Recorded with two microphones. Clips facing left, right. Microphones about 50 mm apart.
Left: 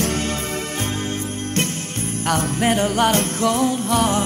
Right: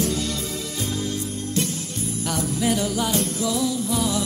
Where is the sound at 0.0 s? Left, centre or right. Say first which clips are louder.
Left 3 dB; left.